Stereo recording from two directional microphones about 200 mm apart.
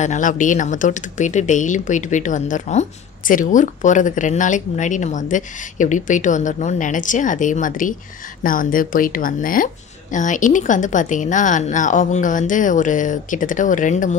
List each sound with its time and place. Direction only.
0.0 s speech: 40° left (ahead or behind)